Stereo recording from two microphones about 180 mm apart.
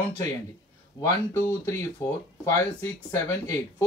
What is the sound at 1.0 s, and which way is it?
Speech, 15° left (ahead or behind).